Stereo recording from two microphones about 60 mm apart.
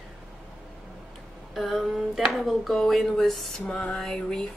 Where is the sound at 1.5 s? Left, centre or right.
Centre.